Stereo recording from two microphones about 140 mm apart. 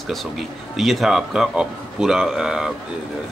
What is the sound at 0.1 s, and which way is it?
Speech, centre (ahead or behind).